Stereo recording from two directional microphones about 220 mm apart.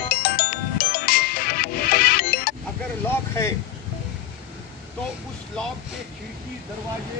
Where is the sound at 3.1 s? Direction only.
10° left (ahead or behind).